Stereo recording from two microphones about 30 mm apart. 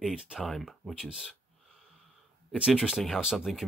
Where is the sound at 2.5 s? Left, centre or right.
Right.